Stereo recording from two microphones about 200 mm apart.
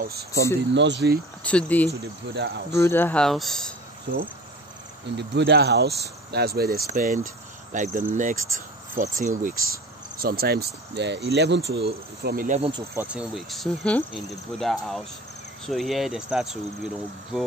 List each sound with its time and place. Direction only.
0.0 s speech: 50° right (ahead or behind)
1.4 s speech: 5° left (ahead or behind)
2.3 s speech: 55° right (ahead or behind)
2.8 s speech: 10° left (ahead or behind)
5.1 s speech: 60° right (ahead or behind)
7.7 s cricket: 40° right (ahead or behind)
9.1 s speech: 40° right (ahead or behind)
12.5 s speech: 30° right (ahead or behind)
12.9 s speech: 5° right (ahead or behind)